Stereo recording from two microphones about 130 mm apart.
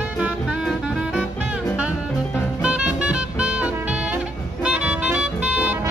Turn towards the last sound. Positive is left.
turn(degrees=-10)  # may be behind; listen again after turning